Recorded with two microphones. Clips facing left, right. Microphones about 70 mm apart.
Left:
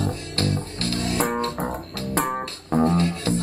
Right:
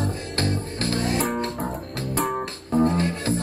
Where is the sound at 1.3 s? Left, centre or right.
Left.